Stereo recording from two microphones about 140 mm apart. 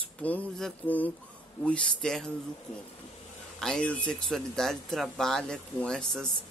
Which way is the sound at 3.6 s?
5° left (ahead or behind).